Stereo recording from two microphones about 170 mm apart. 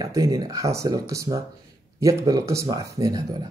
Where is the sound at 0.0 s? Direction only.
20° right (ahead or behind).